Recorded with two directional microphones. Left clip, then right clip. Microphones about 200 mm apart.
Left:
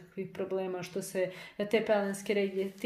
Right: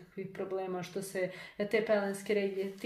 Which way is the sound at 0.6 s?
30° left (ahead or behind).